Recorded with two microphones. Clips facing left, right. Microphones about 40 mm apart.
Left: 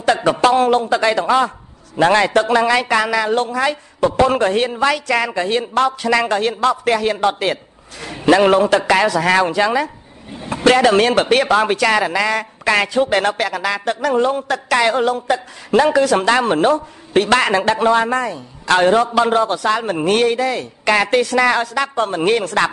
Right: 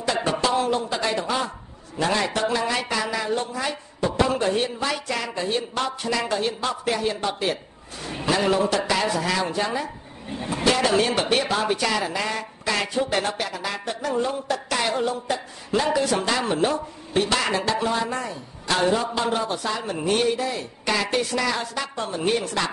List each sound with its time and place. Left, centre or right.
0.0 s a man's voice: left
10.5 s speech: left